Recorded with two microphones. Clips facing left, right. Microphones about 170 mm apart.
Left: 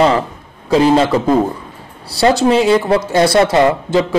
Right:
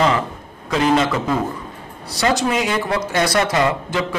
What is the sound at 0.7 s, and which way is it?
A man's voice, 30° left (ahead or behind).